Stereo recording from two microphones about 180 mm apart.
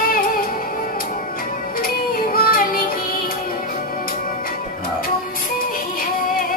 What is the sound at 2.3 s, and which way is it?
Music, 55° left (ahead or behind).